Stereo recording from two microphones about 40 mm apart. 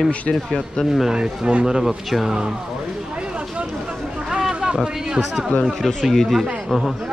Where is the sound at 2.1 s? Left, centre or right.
Centre.